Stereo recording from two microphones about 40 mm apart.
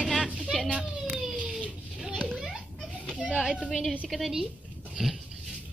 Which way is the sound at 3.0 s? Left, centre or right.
Left.